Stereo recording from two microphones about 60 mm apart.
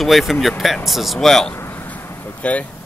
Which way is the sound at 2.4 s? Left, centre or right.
Left.